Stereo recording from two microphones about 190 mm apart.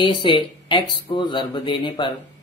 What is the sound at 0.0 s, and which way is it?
Speech, 25° left (ahead or behind).